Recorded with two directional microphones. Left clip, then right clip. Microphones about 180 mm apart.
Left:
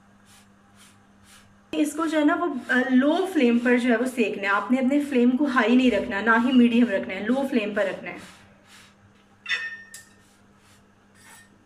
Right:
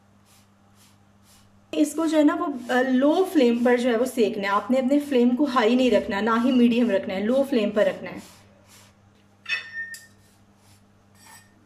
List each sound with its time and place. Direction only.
1.8 s a woman's voice: 35° right (ahead or behind)